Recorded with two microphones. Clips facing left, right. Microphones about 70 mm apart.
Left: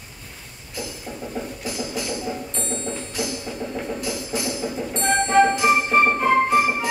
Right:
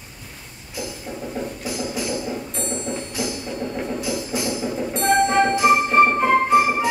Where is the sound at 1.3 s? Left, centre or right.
Centre.